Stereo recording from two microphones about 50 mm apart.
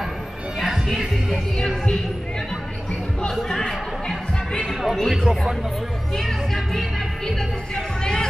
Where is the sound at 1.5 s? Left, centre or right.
Centre.